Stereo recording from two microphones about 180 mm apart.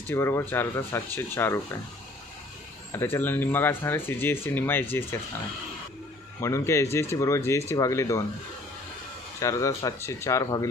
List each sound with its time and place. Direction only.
0.1 s speech: 15° left (ahead or behind)
2.9 s speech: 10° left (ahead or behind)
6.4 s speech: 15° left (ahead or behind)
9.4 s speech: 15° left (ahead or behind)